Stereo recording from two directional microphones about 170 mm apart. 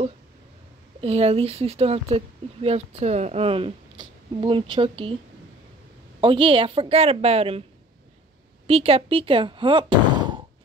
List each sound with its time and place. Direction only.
1.0 s speech: 35° right (ahead or behind)
6.2 s speech: 30° right (ahead or behind)
8.6 s speech: 35° right (ahead or behind)